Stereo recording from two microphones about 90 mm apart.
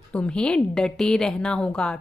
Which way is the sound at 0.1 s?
10° left (ahead or behind).